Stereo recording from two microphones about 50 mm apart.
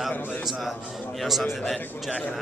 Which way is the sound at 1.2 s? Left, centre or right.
Centre.